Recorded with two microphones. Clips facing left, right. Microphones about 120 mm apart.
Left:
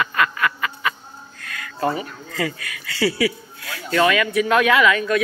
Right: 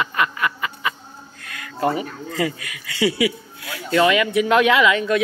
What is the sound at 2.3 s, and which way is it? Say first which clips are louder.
Speech: right 2 dB; 20° right (ahead or behind).